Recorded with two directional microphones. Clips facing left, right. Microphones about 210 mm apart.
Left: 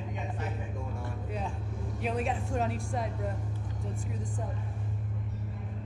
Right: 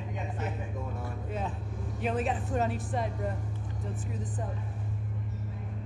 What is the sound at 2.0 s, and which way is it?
Speech, centre (ahead or behind).